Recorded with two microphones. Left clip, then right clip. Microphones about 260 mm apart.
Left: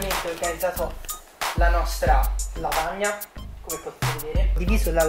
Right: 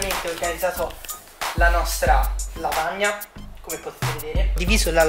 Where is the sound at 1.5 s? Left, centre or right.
Centre.